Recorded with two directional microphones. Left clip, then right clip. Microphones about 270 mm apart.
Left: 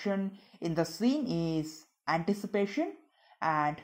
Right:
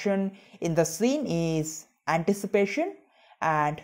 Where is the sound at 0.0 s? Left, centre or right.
Right.